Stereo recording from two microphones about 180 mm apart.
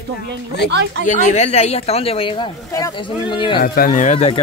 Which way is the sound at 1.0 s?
40° left (ahead or behind).